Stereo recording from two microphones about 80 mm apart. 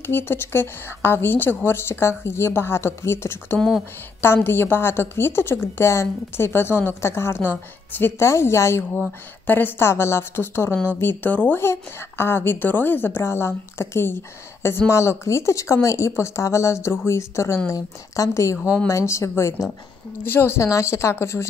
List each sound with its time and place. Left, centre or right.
0.0 s a woman's voice: left
11.6 s a woman's voice: left